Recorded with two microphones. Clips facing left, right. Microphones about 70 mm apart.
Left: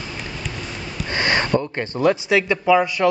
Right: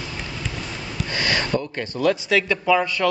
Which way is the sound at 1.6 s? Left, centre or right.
Left.